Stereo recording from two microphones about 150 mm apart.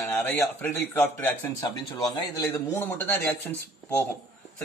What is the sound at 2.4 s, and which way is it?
A man's voice, 15° left (ahead or behind).